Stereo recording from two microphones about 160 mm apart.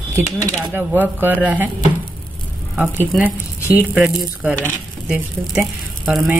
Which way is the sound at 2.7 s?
10° right (ahead or behind).